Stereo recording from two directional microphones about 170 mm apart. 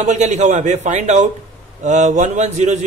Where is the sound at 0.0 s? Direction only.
45° right (ahead or behind).